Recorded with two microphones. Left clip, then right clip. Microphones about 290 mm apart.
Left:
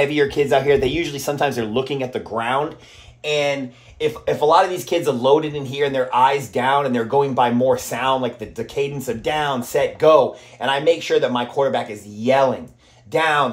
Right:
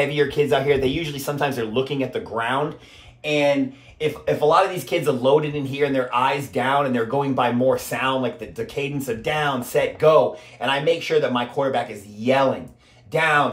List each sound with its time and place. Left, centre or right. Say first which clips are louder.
0.0 s speech: left 2 dB; left